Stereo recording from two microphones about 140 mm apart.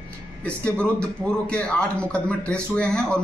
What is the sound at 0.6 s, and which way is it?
A man's voice, 10° left (ahead or behind).